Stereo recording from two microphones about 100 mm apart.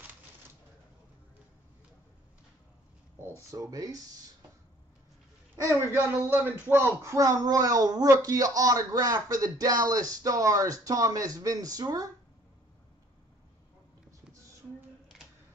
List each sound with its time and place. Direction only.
3.2 s speech: 30° right (ahead or behind)
5.6 s speech: 30° right (ahead or behind)
15.1 s a sound: 5° right (ahead or behind)